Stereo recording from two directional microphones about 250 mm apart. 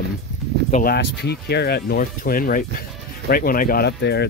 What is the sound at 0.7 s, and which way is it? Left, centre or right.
Speech, left.